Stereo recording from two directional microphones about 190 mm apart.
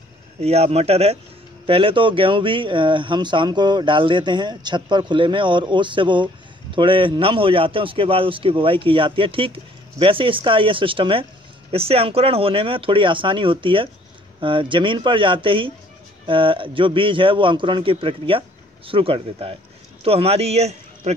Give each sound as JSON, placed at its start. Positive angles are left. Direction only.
{"t": 0.4, "sound": "speech", "side_deg": -35}